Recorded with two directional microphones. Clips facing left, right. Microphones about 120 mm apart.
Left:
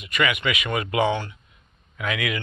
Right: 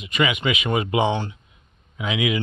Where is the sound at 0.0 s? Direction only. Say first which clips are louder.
Right 2 dB; 25° right (ahead or behind).